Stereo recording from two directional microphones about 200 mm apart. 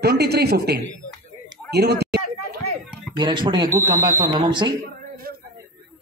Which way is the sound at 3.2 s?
20° right (ahead or behind).